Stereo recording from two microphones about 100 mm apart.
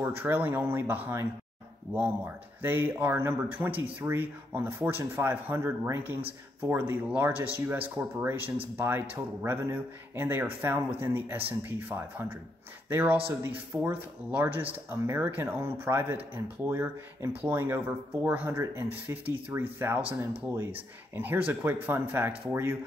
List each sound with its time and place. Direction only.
0.0 s speech: 20° right (ahead or behind)
18.5 s speech: 30° right (ahead or behind)